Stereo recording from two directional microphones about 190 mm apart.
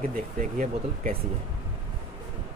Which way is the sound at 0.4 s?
45° right (ahead or behind).